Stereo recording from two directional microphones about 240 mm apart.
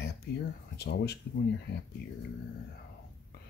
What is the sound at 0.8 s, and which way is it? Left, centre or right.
Speech, left.